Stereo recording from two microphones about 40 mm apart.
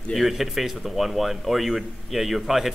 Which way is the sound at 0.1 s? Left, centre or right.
Centre.